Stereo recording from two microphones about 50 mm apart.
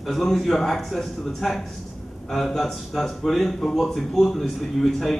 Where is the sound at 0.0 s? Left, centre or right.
Centre.